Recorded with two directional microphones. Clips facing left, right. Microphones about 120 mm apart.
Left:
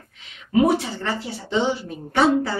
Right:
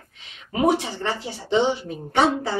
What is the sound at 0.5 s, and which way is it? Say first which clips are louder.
A woman's voice: left 2 dB; 20° right (ahead or behind).